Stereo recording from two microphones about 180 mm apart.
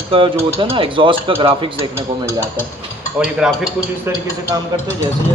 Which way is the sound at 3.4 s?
5° right (ahead or behind).